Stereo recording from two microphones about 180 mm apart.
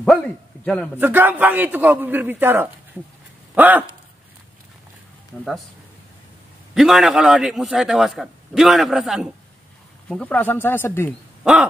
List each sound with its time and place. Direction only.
0.0 s a man's voice: 5° left (ahead or behind)
0.9 s a man's voice: 10° right (ahead or behind)
6.7 s a man's voice: centre (ahead or behind)